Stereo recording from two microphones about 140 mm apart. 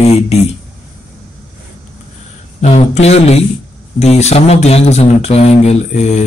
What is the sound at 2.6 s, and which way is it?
Speech, 50° left (ahead or behind).